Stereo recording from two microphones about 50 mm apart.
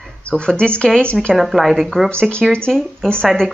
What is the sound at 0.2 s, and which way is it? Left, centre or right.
Speech, centre.